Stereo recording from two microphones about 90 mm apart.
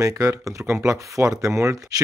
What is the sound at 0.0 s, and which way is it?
Speech, 35° right (ahead or behind).